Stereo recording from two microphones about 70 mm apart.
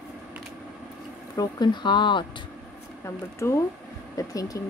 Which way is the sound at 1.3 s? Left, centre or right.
Left.